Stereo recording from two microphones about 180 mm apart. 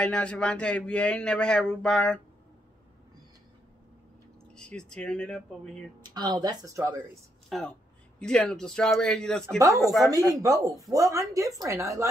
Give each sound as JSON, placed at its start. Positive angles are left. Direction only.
{"t": 0.0, "sound": "a man's voice", "side_deg": 5}
{"t": 4.6, "sound": "a man's voice", "side_deg": 5}
{"t": 6.0, "sound": "speech", "side_deg": -20}
{"t": 7.4, "sound": "a man's voice", "side_deg": 0}
{"t": 10.0, "sound": "a woman's voice", "side_deg": -20}